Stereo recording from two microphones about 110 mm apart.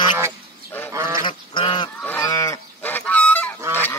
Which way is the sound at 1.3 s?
50° left (ahead or behind).